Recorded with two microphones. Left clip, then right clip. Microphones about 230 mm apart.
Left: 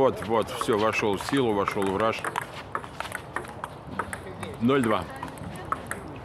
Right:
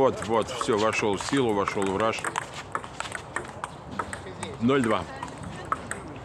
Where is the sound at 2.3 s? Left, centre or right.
Right.